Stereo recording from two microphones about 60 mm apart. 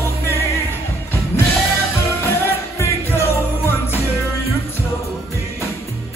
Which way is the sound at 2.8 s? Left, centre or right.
Left.